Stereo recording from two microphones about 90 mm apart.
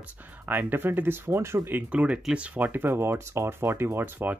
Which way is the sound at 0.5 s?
20° right (ahead or behind).